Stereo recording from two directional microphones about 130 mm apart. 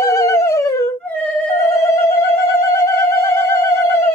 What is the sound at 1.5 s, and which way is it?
Music, 20° left (ahead or behind).